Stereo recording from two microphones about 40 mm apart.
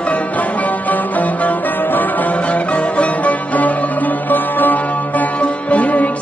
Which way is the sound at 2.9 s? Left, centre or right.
Left.